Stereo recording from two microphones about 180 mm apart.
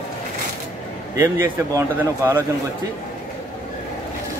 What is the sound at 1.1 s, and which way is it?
A man's voice, 20° right (ahead or behind).